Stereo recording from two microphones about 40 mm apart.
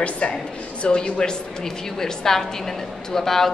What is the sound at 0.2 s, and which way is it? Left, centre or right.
Speech, left.